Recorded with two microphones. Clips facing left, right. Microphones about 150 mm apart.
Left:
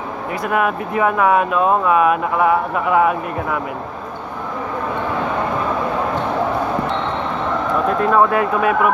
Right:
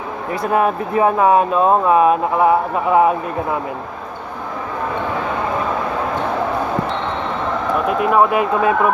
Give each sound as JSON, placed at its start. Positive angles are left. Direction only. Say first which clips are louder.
{"t": 0.3, "sound": "speech", "louder": "right 2 dB", "side_deg": -30}
{"t": 8.0, "sound": "speech", "louder": "right 1 dB", "side_deg": -15}